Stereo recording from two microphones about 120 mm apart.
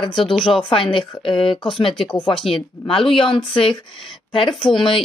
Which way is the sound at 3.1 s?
5° left (ahead or behind).